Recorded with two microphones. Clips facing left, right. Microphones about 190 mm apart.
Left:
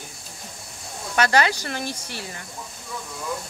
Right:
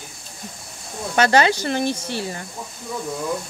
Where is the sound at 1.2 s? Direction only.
25° right (ahead or behind).